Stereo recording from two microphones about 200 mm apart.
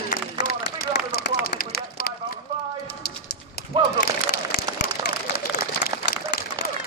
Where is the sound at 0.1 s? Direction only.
50° left (ahead or behind).